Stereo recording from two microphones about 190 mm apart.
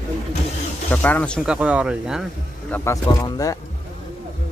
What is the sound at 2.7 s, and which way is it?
Speech, 15° left (ahead or behind).